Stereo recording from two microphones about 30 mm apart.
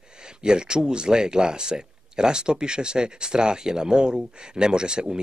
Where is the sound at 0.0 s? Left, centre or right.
Right.